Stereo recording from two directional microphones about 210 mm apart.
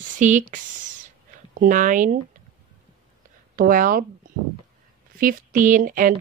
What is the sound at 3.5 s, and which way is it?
Speech, 40° right (ahead or behind).